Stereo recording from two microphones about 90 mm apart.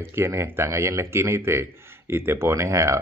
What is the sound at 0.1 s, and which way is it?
A man's voice, 30° right (ahead or behind).